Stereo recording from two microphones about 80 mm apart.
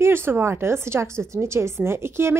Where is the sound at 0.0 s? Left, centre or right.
Right.